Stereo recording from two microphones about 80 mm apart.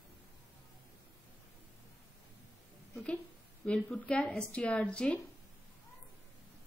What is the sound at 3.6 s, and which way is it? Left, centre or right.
A woman's voice, centre.